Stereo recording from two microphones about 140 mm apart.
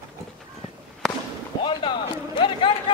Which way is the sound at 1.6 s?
35° left (ahead or behind).